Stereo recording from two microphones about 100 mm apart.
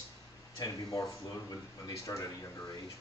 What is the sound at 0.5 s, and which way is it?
Speech, 35° left (ahead or behind).